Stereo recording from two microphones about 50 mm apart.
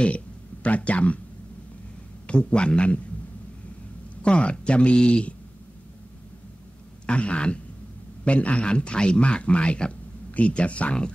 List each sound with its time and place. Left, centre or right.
0.7 s a man's voice: left
2.2 s a man's voice: left
4.2 s a man's voice: left
7.1 s a man's voice: left